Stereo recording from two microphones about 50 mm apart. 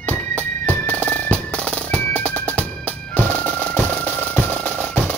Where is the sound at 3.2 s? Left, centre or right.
Left.